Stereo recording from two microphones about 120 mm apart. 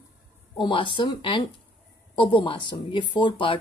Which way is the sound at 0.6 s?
45° left (ahead or behind).